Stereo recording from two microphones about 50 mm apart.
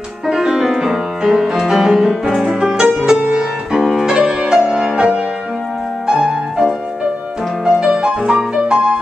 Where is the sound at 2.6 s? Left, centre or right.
Centre.